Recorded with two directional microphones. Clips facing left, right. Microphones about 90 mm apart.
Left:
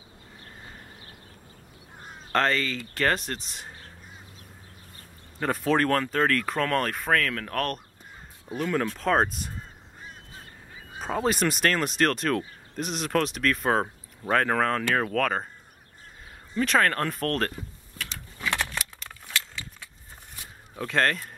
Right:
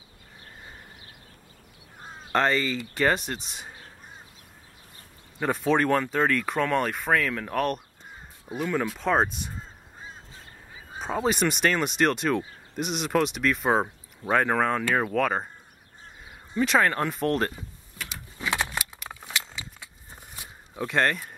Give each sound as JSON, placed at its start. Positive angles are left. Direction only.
{"t": 2.3, "sound": "speech", "side_deg": -10}
{"t": 5.4, "sound": "speech", "side_deg": -5}
{"t": 11.0, "sound": "speech", "side_deg": 0}
{"t": 16.5, "sound": "mechanisms", "side_deg": -5}
{"t": 20.7, "sound": "speech", "side_deg": -5}